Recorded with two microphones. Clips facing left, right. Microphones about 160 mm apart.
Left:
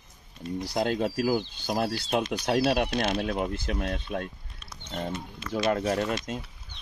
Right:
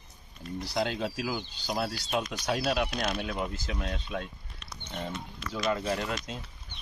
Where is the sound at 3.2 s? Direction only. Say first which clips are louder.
Left 5 dB; 55° left (ahead or behind).